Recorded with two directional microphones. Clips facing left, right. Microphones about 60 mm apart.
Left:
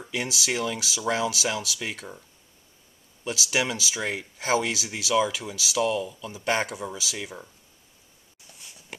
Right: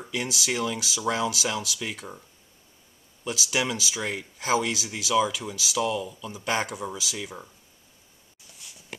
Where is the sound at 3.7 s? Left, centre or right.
Centre.